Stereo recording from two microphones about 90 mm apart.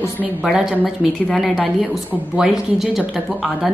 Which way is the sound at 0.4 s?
5° right (ahead or behind).